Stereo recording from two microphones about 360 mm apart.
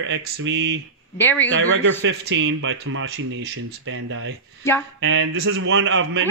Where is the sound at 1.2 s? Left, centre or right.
Centre.